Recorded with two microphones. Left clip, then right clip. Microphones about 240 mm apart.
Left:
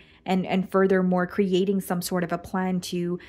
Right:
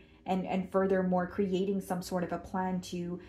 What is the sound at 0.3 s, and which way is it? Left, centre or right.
Speech, left.